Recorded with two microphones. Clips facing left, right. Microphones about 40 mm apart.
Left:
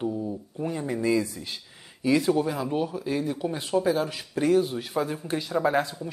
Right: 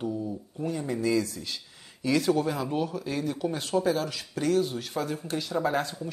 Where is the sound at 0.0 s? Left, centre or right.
Centre.